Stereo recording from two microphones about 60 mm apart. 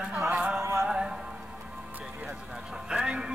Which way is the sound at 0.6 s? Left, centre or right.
Right.